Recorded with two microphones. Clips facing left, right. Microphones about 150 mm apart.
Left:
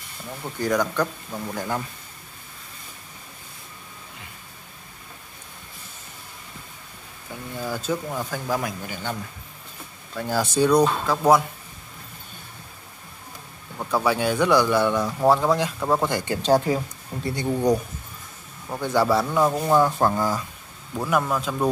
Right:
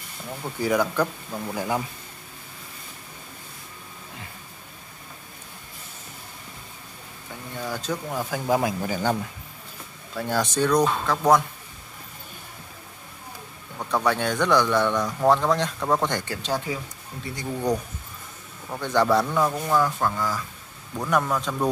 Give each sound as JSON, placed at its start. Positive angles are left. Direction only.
{"t": 0.3, "sound": "speech", "side_deg": -5}
{"t": 7.5, "sound": "speech", "side_deg": 5}
{"t": 8.5, "sound": "speech", "side_deg": -25}
{"t": 8.8, "sound": "speech", "side_deg": -40}
{"t": 10.1, "sound": "speech", "side_deg": 0}
{"t": 13.7, "sound": "speech", "side_deg": 5}
{"t": 16.4, "sound": "speech", "side_deg": 40}
{"t": 18.7, "sound": "speech", "side_deg": 10}
{"t": 19.5, "sound": "speech", "side_deg": 25}
{"t": 20.9, "sound": "speech", "side_deg": 5}